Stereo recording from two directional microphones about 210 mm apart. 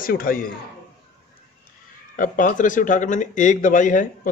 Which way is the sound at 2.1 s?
40° left (ahead or behind).